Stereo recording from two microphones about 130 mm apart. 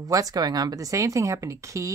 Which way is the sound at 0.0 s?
30° right (ahead or behind).